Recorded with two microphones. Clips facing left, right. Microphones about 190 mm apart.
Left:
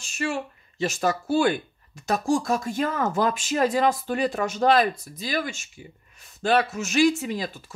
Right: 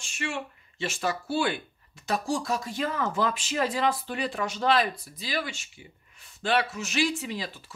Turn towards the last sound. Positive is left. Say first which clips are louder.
# left 5 dB
turn(degrees=45)  # may be behind; listen again after turning